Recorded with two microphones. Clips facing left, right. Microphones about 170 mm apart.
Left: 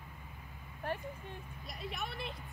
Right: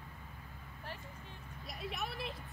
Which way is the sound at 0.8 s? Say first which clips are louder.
Left 10 dB; 55° left (ahead or behind).